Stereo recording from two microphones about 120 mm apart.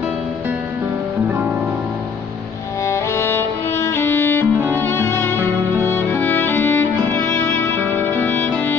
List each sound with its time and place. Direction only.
2.9 s music: 20° left (ahead or behind)